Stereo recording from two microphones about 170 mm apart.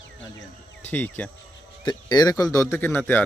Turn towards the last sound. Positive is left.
turn(degrees=10)  # may be behind; listen again after turning